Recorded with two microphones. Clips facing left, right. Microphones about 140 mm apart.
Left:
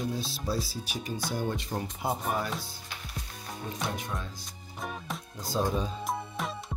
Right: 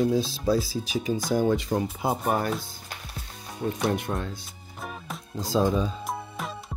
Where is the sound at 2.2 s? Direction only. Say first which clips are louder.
Right 7 dB; 60° right (ahead or behind).